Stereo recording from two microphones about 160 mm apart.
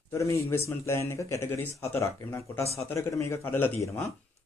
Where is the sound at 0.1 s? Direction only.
20° left (ahead or behind).